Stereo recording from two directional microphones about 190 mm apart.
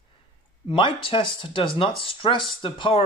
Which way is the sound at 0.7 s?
25° left (ahead or behind).